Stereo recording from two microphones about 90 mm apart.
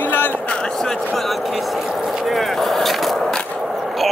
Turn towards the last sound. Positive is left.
turn(degrees=0)  # may be behind; listen again after turning